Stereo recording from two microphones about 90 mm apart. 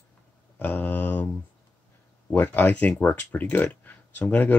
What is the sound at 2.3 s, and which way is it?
Speech, 20° left (ahead or behind).